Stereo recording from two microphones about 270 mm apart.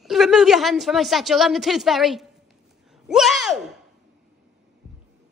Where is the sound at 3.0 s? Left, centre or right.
Centre.